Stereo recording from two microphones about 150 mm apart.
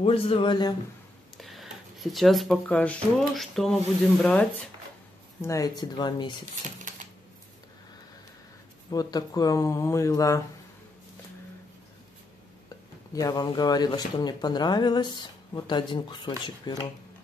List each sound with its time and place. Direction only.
0.0 s a man's voice: 40° left (ahead or behind)
1.4 s speech: centre (ahead or behind)
5.4 s speech: 20° left (ahead or behind)
8.9 s speech: 25° left (ahead or behind)
13.1 s speech: 25° left (ahead or behind)